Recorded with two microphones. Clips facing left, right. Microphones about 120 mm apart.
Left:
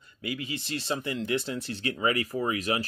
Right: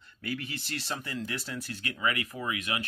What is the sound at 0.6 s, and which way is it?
Speech, 20° left (ahead or behind).